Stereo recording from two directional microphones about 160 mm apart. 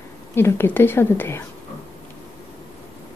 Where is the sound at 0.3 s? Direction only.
15° left (ahead or behind).